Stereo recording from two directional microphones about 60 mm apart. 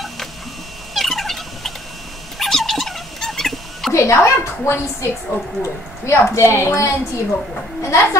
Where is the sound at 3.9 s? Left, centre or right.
Left.